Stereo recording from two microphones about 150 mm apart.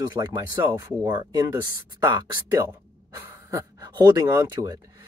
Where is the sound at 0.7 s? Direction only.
15° right (ahead or behind).